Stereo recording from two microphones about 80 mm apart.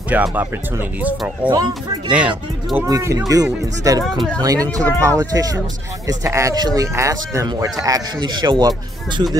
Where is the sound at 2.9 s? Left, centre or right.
Right.